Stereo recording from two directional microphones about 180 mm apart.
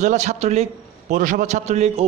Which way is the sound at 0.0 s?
40° right (ahead or behind).